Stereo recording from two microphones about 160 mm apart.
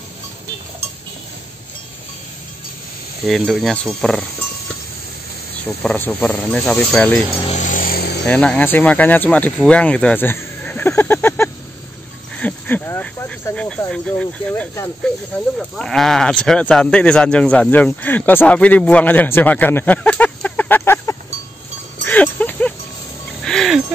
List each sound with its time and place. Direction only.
3.3 s speech: centre (ahead or behind)
5.8 s speech: 10° left (ahead or behind)
7.4 s a sound: 50° left (ahead or behind); by 8.2 s 75° left (ahead or behind)
8.3 s speech: 5° left (ahead or behind)
22.0 s music: 10° left (ahead or behind)